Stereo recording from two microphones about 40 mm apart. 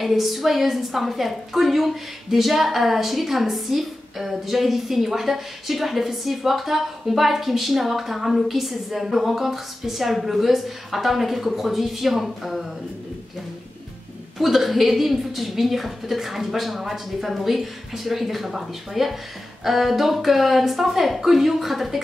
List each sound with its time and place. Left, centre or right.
0.0 s a woman's voice: centre
14.4 s a woman's voice: centre